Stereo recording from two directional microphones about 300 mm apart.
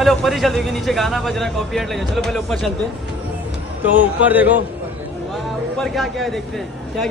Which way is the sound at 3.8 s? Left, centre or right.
Centre.